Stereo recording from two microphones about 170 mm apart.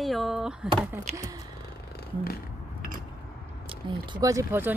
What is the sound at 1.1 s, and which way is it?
Speech, 20° right (ahead or behind).